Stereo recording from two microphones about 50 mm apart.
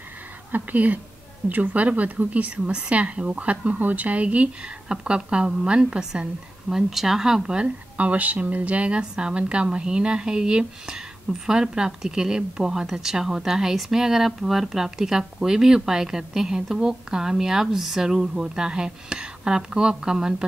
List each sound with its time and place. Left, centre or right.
0.5 s a woman's voice: right
4.9 s a woman's voice: centre
6.7 s a woman's voice: centre